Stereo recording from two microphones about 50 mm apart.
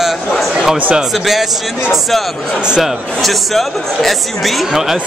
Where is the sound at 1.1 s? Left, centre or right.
Centre.